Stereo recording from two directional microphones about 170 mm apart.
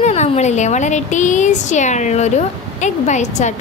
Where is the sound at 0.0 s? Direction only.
40° left (ahead or behind).